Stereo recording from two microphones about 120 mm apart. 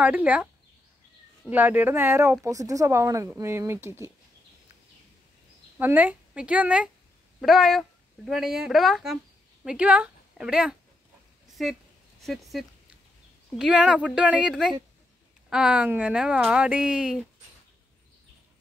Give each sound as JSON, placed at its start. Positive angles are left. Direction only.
{"t": 0.0, "sound": "speech", "side_deg": -10}
{"t": 1.5, "sound": "speech", "side_deg": -15}
{"t": 5.8, "sound": "speech", "side_deg": -15}
{"t": 7.3, "sound": "speech", "side_deg": 0}
{"t": 12.2, "sound": "speech", "side_deg": 0}